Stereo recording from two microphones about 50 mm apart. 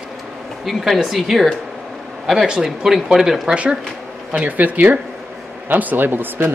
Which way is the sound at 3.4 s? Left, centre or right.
Right.